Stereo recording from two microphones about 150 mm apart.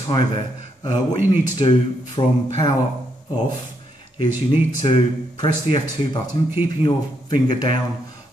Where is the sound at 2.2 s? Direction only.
25° left (ahead or behind).